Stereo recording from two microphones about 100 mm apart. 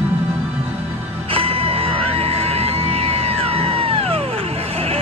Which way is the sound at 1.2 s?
70° right (ahead or behind).